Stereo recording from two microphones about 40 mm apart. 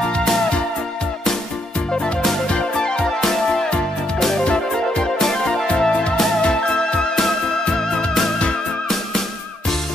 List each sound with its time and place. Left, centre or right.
2.5 s music: left
3.2 s music: centre
5.2 s music: centre
5.8 s music: left
7.2 s music: centre